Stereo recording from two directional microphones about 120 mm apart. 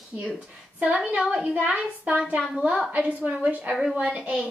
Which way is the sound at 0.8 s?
10° right (ahead or behind).